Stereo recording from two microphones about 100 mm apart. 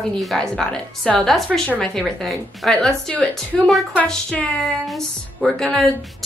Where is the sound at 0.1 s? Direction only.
5° left (ahead or behind).